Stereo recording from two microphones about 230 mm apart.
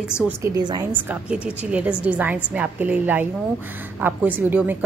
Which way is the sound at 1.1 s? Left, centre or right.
Centre.